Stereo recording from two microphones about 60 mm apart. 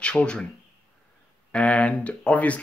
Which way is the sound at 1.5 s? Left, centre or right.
Centre.